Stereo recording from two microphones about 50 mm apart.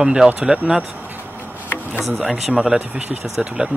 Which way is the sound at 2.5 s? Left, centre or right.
Centre.